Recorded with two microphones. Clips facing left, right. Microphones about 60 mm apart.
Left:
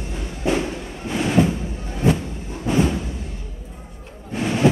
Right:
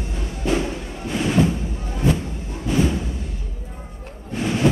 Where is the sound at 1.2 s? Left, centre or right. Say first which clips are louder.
Left 1 dB; centre.